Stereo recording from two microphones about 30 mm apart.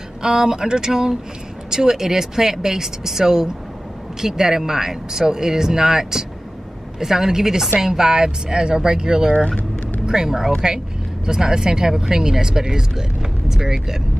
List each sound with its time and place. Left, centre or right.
0.2 s speech: right